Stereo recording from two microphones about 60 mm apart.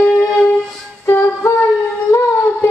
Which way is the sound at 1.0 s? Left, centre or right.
Left.